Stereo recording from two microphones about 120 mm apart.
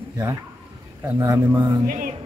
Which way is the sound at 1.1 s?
25° right (ahead or behind).